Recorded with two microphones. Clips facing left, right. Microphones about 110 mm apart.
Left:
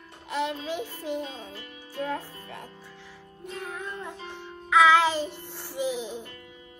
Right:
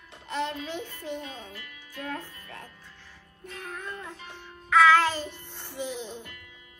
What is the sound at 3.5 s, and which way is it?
Music, 10° left (ahead or behind).